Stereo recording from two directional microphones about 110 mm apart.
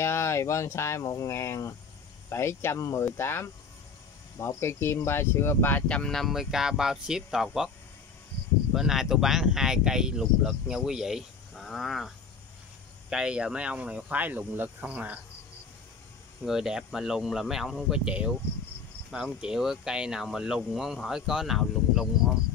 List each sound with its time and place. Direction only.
0.0 s speech: 25° left (ahead or behind); by 7.7 s 5° right (ahead or behind)
8.7 s speech: 5° right (ahead or behind)
13.1 s speech: 10° right (ahead or behind)
16.4 s speech: 5° right (ahead or behind)
19.4 s speech: 5° right (ahead or behind)